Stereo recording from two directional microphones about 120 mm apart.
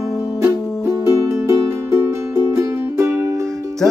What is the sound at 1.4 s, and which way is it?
Music, 20° right (ahead or behind).